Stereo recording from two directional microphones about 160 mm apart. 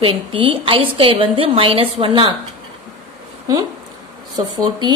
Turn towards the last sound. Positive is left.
turn(degrees=-25)  # may be behind; listen again after turning